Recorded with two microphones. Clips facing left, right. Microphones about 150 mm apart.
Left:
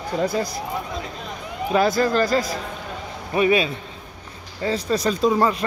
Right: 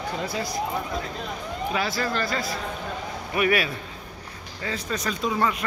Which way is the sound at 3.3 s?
20° left (ahead or behind).